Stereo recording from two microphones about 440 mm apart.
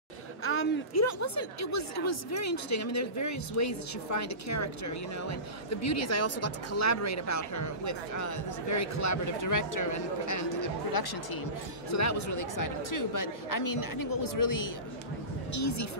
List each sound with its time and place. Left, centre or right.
0.4 s speech: left
11.9 s speech: left